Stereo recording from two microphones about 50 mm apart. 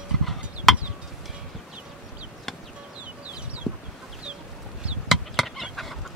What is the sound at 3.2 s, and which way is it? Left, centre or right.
Chicken, right.